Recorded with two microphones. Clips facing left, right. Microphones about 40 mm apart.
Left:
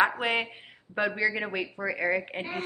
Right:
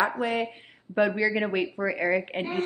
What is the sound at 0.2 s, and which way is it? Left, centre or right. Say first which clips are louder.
Speech: right 1 dB; left.